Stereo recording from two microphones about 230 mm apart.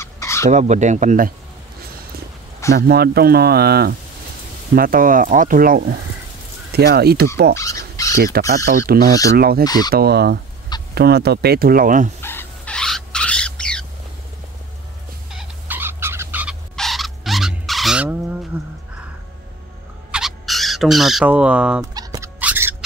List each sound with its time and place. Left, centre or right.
0.0 s a sound: centre
0.5 s speech: right
2.7 s speech: right
7.5 s dog: centre
8.2 s speech: right
12.2 s bird: centre
15.3 s a sound: centre
20.1 s bird: centre
21.9 s a sound: centre